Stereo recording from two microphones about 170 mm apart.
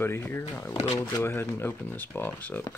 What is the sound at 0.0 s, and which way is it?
Speech, 15° left (ahead or behind).